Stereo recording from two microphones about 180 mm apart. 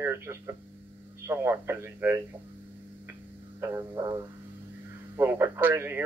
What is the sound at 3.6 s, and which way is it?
Speech, 15° right (ahead or behind).